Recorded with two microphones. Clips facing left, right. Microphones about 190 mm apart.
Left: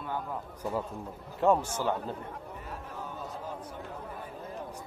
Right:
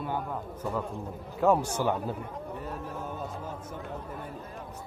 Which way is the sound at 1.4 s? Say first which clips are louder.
Right 1 dB; 10° right (ahead or behind).